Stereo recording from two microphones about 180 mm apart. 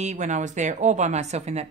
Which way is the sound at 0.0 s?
40° right (ahead or behind).